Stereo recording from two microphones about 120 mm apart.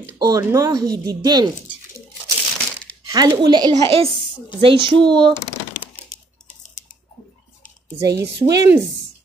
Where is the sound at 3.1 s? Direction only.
35° right (ahead or behind).